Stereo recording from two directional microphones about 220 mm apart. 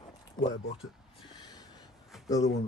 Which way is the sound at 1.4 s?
20° left (ahead or behind).